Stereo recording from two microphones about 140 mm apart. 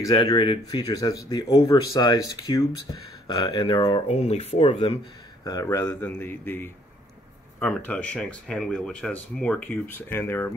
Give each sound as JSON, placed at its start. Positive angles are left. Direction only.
{"t": 0.0, "sound": "speech", "side_deg": 25}
{"t": 4.1, "sound": "speech", "side_deg": 50}
{"t": 5.4, "sound": "speech", "side_deg": 25}